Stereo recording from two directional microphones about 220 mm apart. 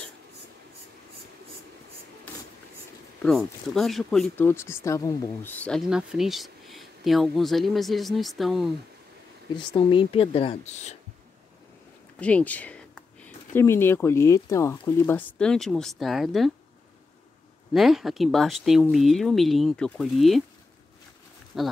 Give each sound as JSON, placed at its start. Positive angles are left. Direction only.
{"t": 3.2, "sound": "speech", "side_deg": 0}
{"t": 9.6, "sound": "speech", "side_deg": 20}
{"t": 12.2, "sound": "speech", "side_deg": 5}
{"t": 17.7, "sound": "speech", "side_deg": 0}
{"t": 21.5, "sound": "speech", "side_deg": 0}